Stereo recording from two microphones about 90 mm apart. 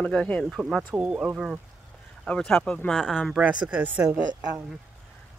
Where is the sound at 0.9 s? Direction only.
15° right (ahead or behind).